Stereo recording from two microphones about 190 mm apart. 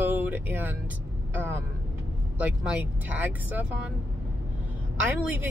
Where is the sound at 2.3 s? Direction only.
5° right (ahead or behind).